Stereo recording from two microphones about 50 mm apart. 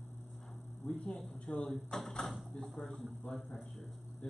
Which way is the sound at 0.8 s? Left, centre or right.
Centre.